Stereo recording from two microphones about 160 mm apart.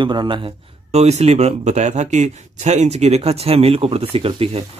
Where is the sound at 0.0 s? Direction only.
30° right (ahead or behind).